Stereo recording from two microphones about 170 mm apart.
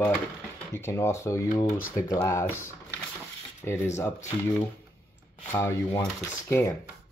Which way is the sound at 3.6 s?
15° left (ahead or behind).